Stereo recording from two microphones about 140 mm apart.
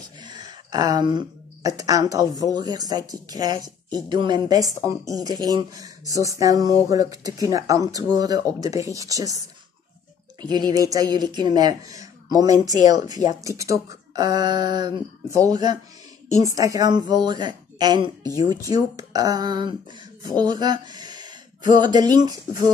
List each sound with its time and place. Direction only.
0.2 s a sound: 30° right (ahead or behind)
1.8 s speech: 25° right (ahead or behind)
10.4 s speech: 30° right (ahead or behind)